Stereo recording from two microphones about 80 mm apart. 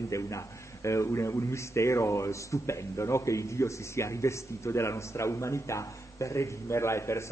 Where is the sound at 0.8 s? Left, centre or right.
Left.